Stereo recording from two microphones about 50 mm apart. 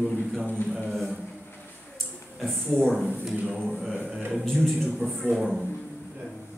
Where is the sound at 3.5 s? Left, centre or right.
Centre.